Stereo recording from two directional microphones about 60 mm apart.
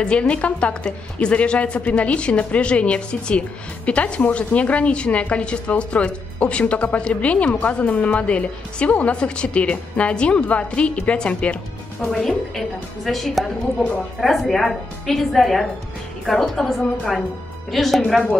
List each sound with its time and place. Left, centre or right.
0.0 s a woman's voice: centre
12.5 s a woman's voice: centre